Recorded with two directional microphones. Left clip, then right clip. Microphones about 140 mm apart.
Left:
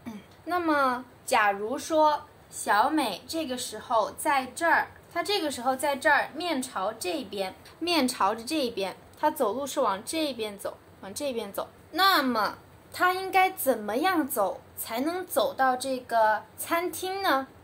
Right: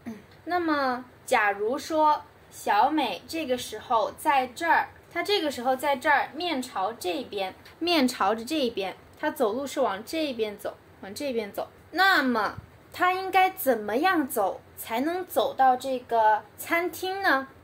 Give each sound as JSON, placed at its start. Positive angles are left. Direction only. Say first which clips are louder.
{"t": 0.0, "sound": "a woman's voice", "louder": "right 1 dB", "side_deg": -10}
{"t": 3.3, "sound": "a woman's voice", "louder": "right 3 dB", "side_deg": -10}
{"t": 7.8, "sound": "a woman's voice", "louder": "right 1 dB", "side_deg": -25}